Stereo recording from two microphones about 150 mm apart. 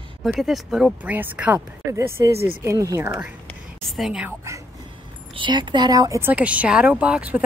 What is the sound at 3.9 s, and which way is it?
Speech, centre (ahead or behind).